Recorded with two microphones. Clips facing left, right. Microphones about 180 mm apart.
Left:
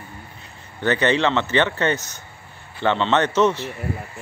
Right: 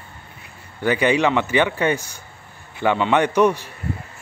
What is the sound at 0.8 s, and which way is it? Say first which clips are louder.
A man's voice: right 1 dB; 10° right (ahead or behind).